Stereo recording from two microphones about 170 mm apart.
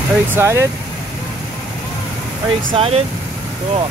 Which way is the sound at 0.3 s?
15° right (ahead or behind).